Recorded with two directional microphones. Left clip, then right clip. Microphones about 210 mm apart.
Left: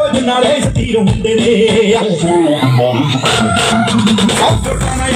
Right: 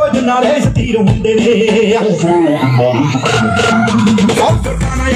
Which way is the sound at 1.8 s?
45° left (ahead or behind).